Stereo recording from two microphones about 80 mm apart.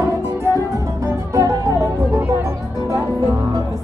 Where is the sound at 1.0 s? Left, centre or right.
Right.